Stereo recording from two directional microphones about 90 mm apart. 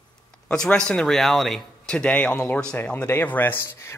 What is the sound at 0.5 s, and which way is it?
Speech, 10° left (ahead or behind).